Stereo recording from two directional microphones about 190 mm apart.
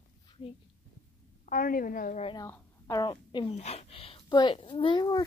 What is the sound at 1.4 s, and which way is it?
Speech, 45° left (ahead or behind).